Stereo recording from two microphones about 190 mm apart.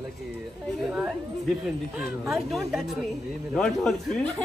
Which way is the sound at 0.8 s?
Centre (ahead or behind).